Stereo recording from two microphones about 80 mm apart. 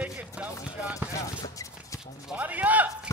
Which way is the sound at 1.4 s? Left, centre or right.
Left.